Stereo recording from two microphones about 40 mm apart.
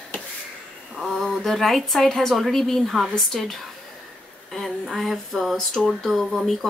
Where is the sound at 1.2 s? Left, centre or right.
Centre.